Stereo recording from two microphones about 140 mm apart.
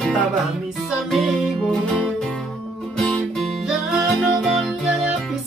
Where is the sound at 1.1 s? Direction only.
Centre (ahead or behind).